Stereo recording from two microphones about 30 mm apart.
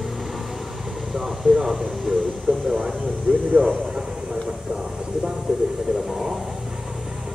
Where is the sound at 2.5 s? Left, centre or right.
Right.